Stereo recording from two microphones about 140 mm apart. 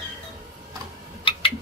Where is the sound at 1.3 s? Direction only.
40° left (ahead or behind).